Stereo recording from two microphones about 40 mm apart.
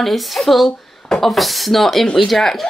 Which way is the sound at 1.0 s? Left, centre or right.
Centre.